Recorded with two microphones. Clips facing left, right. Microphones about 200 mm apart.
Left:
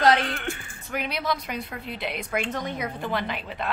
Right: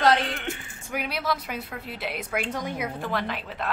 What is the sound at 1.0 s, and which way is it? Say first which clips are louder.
A woman's voice: even; 5° right (ahead or behind).